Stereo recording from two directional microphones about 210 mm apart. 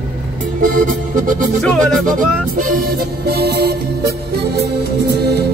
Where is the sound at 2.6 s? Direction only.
45° right (ahead or behind).